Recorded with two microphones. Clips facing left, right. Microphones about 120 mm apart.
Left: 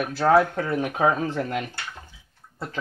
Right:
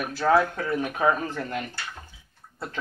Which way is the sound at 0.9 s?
90° left.